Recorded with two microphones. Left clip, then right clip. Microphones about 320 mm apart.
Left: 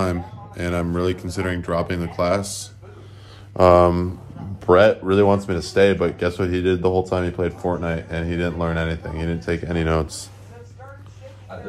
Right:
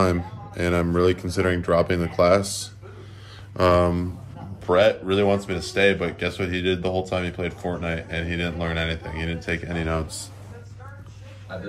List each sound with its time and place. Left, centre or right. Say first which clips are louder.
0.0 s speech: right 2 dB; centre
3.5 s speech: left 6 dB; centre